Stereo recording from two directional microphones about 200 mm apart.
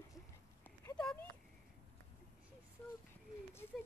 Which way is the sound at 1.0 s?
5° left (ahead or behind).